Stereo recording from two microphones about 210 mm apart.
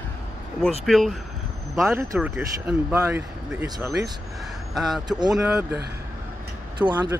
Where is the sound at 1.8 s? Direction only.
15° right (ahead or behind).